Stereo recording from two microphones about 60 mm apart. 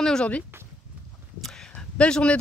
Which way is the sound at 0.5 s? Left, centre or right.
Right.